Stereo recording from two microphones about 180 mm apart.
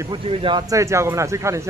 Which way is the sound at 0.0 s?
30° right (ahead or behind).